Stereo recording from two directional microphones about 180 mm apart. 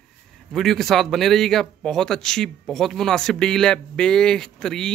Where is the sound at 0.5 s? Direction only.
Centre (ahead or behind).